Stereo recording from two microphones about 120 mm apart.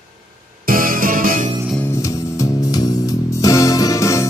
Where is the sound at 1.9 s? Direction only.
25° left (ahead or behind).